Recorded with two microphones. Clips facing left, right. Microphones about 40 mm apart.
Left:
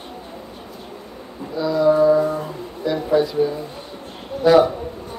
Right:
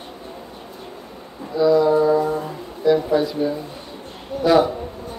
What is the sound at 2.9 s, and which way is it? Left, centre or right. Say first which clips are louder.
Speech: right 1 dB; centre.